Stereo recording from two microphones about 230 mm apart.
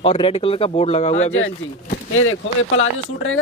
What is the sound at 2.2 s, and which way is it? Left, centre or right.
Speech, left.